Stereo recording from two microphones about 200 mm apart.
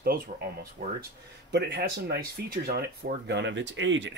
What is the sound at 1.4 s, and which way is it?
Speech, 55° right (ahead or behind).